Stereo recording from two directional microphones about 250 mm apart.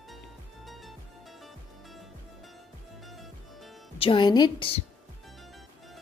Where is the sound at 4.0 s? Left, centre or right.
Centre.